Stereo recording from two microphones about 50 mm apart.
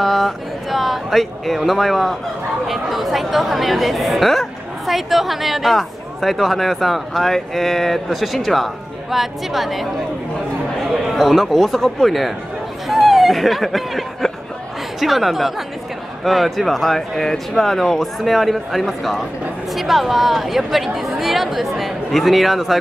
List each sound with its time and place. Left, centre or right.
0.0 s speech: centre
11.1 s speech: centre